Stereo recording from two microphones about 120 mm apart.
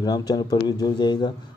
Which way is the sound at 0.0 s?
30° left (ahead or behind).